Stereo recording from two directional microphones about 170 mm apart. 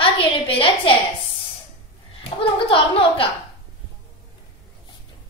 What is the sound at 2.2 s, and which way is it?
A woman's voice, 30° left (ahead or behind).